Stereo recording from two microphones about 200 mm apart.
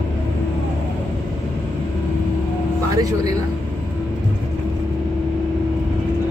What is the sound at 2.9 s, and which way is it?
Speech, 20° right (ahead or behind).